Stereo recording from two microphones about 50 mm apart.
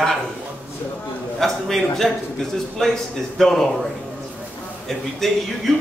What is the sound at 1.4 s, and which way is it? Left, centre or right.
A man's voice, centre.